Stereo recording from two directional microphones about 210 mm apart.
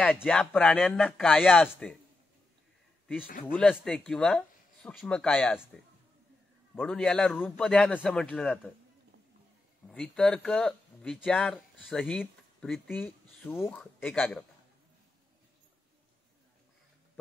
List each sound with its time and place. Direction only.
0.0 s speech: centre (ahead or behind)
3.3 s speech: 40° left (ahead or behind)
3.5 s speech: 5° left (ahead or behind)
6.8 s speech: 5° left (ahead or behind)
9.8 s speech: 5° left (ahead or behind)